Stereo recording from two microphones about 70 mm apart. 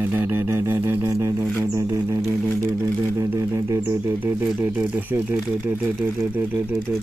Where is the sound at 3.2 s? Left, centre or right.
Right.